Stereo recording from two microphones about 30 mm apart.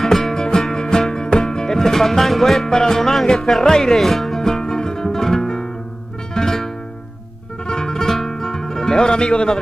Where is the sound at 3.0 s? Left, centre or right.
Centre.